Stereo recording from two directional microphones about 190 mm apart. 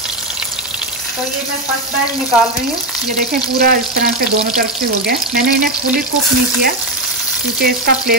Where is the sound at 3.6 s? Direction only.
55° right (ahead or behind).